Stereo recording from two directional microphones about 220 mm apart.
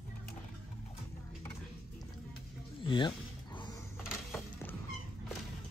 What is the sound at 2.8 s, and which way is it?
Music, 20° left (ahead or behind).